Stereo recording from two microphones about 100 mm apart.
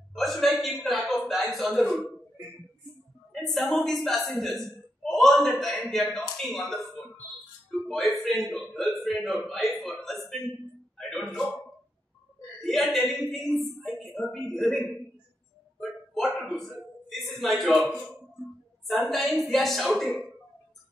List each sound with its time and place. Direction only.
0.1 s a sound: centre (ahead or behind)
3.3 s a woman's voice: centre (ahead or behind)
10.0 s a sound: centre (ahead or behind)
11.0 s music: centre (ahead or behind)
12.6 s a woman's voice: 5° left (ahead or behind)
16.4 s a man's voice: centre (ahead or behind)
17.8 s speech: 15° left (ahead or behind)
18.9 s a woman's voice: centre (ahead or behind)